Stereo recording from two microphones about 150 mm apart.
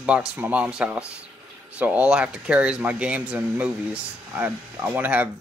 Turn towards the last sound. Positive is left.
turn(degrees=-10)  # may be behind; listen again after turning